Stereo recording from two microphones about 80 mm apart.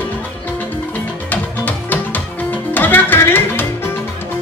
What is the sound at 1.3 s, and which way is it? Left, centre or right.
Music, left.